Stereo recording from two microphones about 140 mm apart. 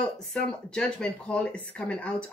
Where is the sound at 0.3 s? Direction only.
5° left (ahead or behind).